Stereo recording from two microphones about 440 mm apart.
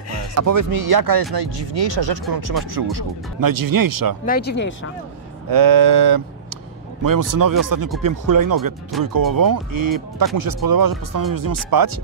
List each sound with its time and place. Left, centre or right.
0.3 s speech: right
1.3 s speech: right
2.7 s speech: right
4.3 s speech: left
5.5 s a sound: right
7.0 s speech: right